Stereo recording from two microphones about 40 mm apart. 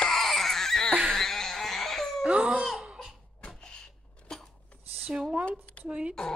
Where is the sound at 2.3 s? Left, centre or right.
Right.